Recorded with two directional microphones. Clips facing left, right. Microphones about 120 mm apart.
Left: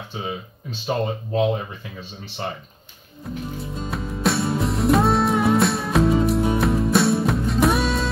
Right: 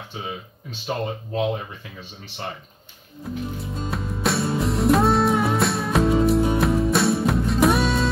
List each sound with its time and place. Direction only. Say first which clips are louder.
0.8 s speech: left 3 dB; 25° left (ahead or behind)
3.3 s music: even; centre (ahead or behind)